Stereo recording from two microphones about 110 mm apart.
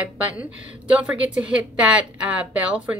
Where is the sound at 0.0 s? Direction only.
15° right (ahead or behind).